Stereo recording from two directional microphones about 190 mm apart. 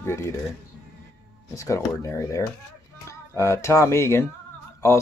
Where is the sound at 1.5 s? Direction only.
15° left (ahead or behind).